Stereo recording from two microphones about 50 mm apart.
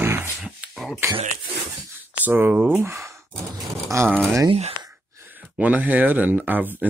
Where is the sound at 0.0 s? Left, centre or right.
Right.